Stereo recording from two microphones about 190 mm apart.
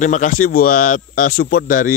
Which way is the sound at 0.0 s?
40° left (ahead or behind).